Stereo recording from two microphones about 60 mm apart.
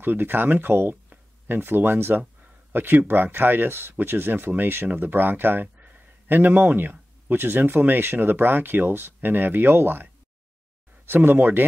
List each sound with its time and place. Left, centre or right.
0.0 s speech: right
11.1 s speech: right